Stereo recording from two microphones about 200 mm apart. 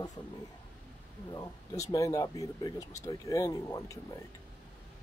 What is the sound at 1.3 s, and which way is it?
Speech, 15° left (ahead or behind).